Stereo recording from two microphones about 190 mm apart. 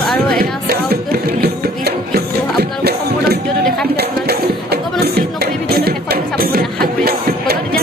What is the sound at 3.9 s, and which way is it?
Music, 55° right (ahead or behind).